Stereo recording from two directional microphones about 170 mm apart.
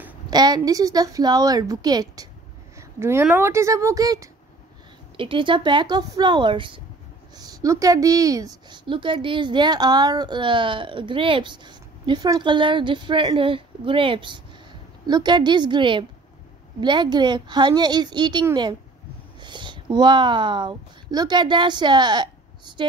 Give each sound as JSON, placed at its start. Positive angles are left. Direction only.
{"t": 0.3, "sound": "a woman's voice", "side_deg": -25}
{"t": 5.1, "sound": "a woman's voice", "side_deg": -30}